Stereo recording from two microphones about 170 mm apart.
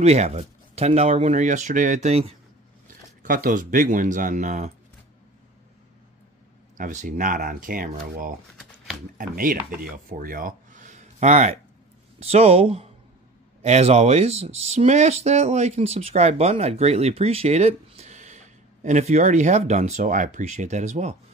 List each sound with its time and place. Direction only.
0.0 s speech: 40° right (ahead or behind)
3.2 s speech: 50° right (ahead or behind)
6.8 s speech: 50° right (ahead or behind)